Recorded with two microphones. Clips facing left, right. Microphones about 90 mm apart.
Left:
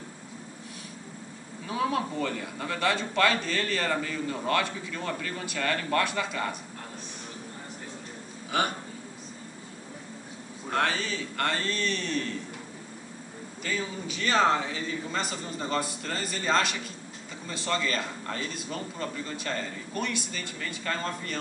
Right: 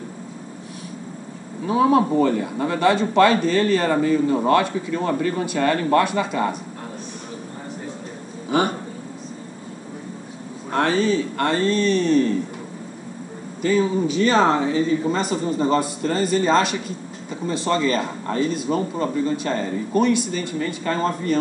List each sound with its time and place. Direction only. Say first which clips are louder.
1.7 s a man's voice: right 12 dB; 30° right (ahead or behind)
8.5 s speech: right 8 dB; 30° right (ahead or behind)
10.7 s a man's voice: right 9 dB; 30° right (ahead or behind)
13.6 s a man's voice: right 14 dB; 30° right (ahead or behind)